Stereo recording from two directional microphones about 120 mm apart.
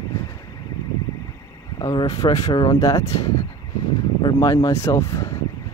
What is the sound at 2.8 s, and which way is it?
Speech, 25° left (ahead or behind).